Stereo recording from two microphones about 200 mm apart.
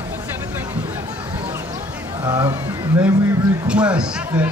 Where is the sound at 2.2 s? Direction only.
20° right (ahead or behind).